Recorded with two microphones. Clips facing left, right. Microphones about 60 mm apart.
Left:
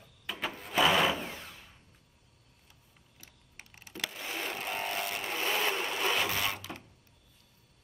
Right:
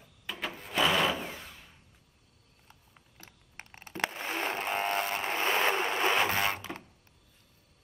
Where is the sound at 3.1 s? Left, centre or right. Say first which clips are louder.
Right 4 dB; right.